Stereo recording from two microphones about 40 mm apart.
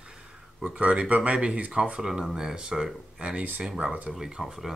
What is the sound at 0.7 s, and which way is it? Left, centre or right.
Speech, right.